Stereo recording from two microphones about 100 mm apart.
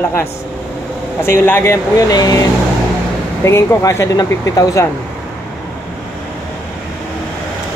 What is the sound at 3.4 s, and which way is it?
Speech, 30° left (ahead or behind).